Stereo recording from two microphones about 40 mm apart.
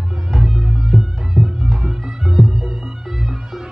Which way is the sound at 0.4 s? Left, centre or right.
Centre.